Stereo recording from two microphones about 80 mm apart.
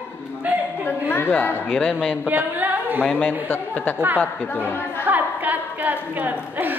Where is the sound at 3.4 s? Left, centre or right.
Left.